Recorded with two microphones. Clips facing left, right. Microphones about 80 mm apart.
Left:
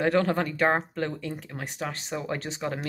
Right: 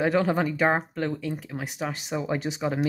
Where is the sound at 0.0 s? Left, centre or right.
Centre.